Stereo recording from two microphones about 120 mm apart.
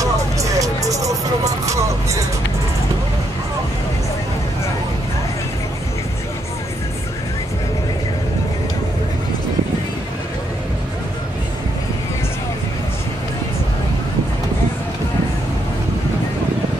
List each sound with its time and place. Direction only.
0.0 s music: 30° right (ahead or behind)